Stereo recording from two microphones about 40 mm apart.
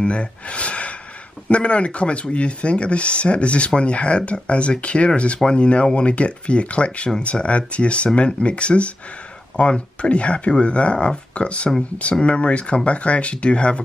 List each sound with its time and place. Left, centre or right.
0.0 s speech: left